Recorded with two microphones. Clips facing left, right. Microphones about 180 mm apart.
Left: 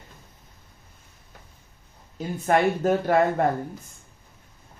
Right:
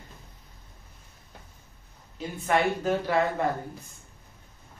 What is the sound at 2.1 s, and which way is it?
Speech, 45° left (ahead or behind).